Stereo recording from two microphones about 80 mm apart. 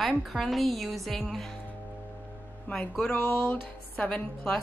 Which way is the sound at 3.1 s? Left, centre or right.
Left.